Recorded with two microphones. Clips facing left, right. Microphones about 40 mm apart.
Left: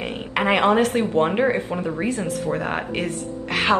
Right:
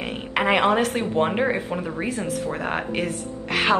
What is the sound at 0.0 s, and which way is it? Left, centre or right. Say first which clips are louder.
A woman's voice: left 1 dB; centre.